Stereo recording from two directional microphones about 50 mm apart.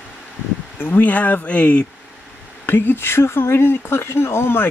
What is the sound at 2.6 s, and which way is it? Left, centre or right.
Speech, left.